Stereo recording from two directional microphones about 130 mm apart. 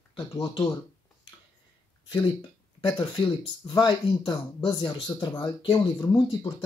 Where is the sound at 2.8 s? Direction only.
40° left (ahead or behind).